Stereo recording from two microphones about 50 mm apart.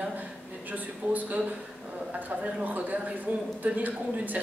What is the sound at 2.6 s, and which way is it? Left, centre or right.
A woman's voice, right.